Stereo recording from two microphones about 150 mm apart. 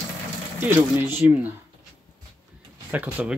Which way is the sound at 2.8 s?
10° right (ahead or behind).